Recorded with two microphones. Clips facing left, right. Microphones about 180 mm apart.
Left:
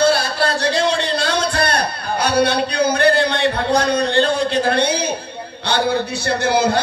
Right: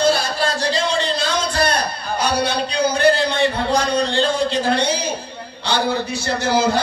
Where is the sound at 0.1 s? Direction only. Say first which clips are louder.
Left 2 dB; 65° left (ahead or behind).